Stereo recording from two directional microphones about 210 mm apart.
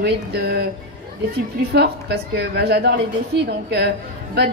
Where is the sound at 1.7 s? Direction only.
50° right (ahead or behind).